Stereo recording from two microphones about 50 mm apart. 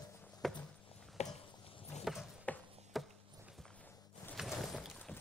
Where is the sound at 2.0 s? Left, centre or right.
Centre.